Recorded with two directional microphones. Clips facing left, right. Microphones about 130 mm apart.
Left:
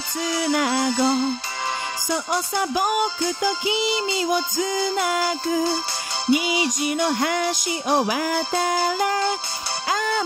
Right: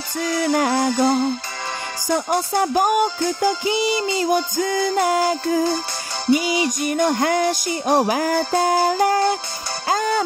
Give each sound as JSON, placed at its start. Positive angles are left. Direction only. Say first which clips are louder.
{"t": 0.2, "sound": "music", "louder": "right 3 dB", "side_deg": -50}
{"t": 5.0, "sound": "music", "louder": "right 4 dB", "side_deg": -40}